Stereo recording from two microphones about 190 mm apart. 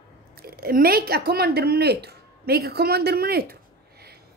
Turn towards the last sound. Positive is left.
turn(degrees=-55)  # may be behind; listen again after turning